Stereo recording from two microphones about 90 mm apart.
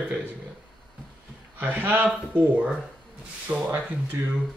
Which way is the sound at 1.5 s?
20° right (ahead or behind).